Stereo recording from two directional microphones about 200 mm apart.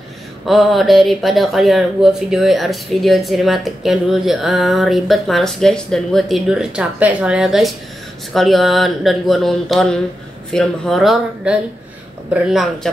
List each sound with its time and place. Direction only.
0.5 s speech: centre (ahead or behind)